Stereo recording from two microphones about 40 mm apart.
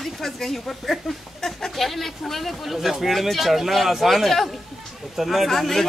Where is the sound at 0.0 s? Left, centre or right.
Centre.